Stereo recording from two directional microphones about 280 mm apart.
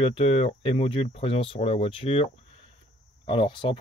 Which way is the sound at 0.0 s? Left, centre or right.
Centre.